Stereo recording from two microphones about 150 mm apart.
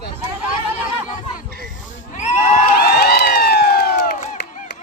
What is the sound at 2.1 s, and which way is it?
Neigh, 50° left (ahead or behind).